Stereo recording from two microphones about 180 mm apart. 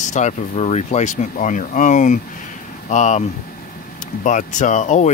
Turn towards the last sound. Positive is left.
turn(degrees=40)  # may be behind; listen again after turning